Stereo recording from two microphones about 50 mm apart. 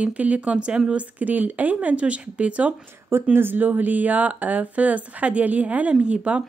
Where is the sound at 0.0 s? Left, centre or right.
Right.